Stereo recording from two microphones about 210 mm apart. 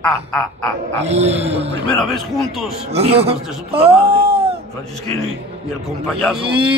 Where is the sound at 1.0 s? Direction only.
30° right (ahead or behind).